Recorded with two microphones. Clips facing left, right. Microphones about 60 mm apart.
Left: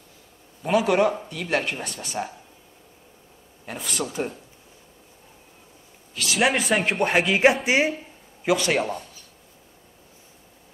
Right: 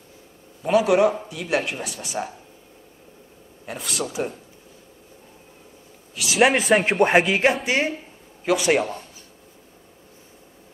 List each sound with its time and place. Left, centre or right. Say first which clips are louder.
0.6 s speech: right 3 dB; centre
3.6 s speech: right 1 dB; centre
6.1 s speech: right 4 dB; centre
7.6 s speech: left 1 dB; centre
8.5 s a man's voice: right 7 dB; centre